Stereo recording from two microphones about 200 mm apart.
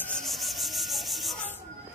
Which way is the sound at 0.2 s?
Centre (ahead or behind).